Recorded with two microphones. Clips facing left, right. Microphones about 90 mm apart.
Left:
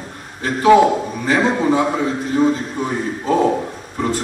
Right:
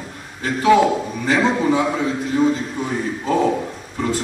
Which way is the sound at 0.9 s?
40° left (ahead or behind).